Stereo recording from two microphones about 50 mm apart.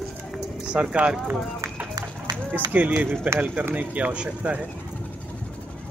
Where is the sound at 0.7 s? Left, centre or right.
Right.